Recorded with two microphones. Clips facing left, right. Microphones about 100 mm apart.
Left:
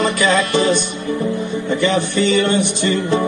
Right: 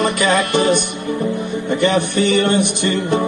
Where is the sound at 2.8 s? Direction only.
55° right (ahead or behind).